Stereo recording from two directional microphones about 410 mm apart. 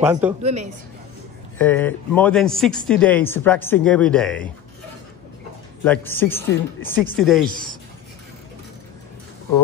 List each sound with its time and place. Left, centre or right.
0.0 s speech: centre
0.4 s speech: centre
1.6 s speech: centre
5.9 s speech: centre